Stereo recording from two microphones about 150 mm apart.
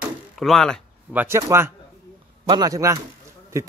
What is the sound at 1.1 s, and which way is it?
A man's voice, 15° right (ahead or behind).